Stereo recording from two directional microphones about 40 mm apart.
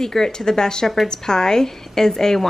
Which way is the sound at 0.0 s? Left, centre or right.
Centre.